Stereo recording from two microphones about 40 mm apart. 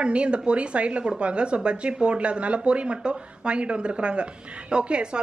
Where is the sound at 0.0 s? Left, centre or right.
Right.